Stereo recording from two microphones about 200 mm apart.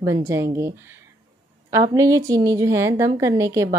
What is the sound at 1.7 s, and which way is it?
Speech, 15° right (ahead or behind).